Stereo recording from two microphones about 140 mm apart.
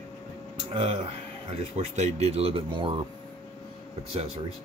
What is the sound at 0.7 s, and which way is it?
Speech, 45° right (ahead or behind).